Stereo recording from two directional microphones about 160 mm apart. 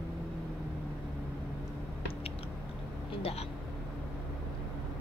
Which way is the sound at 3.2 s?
40° left (ahead or behind).